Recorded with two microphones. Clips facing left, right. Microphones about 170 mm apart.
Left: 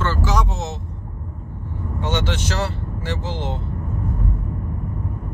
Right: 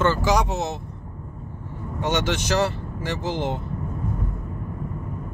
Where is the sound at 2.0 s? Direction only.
45° right (ahead or behind).